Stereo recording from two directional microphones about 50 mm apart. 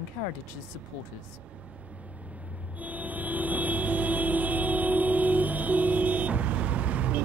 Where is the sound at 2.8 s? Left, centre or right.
Right.